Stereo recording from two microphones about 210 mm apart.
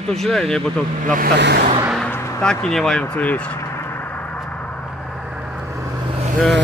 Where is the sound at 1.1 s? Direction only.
50° right (ahead or behind).